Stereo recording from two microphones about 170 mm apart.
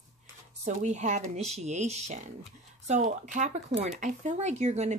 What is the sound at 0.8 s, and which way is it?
Speech, 45° right (ahead or behind).